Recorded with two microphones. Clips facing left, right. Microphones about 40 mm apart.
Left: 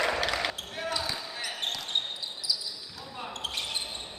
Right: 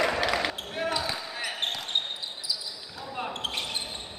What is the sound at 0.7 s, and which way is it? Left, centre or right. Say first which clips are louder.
Basketball bounce: right 5 dB; right.